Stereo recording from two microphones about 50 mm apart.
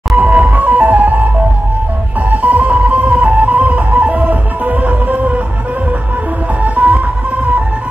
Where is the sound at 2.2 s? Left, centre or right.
Right.